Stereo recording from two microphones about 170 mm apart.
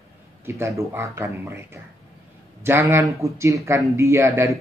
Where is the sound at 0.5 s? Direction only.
15° right (ahead or behind).